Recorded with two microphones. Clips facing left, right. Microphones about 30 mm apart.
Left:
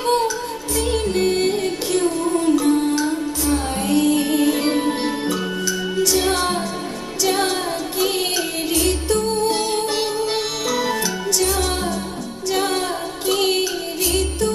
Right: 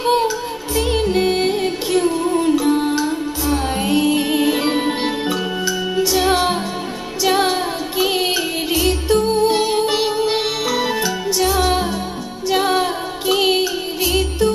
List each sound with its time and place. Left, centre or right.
0.0 s music: centre